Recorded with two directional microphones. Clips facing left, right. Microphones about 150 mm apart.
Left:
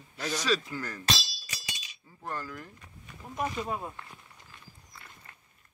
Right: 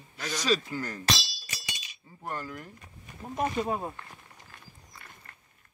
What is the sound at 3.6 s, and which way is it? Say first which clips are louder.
Speech: right 4 dB; 40° right (ahead or behind).